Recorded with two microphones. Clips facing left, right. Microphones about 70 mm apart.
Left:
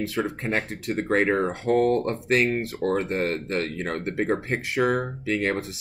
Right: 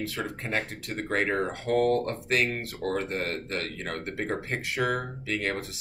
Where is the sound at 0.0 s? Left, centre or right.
Left.